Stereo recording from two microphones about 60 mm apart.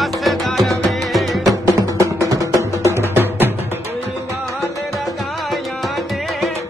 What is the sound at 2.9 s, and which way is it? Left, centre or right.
Music, right.